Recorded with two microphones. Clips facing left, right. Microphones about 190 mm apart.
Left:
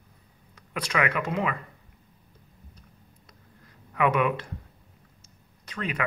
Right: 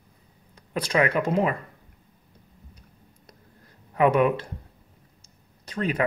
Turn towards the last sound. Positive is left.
turn(degrees=-35)  # may be behind; listen again after turning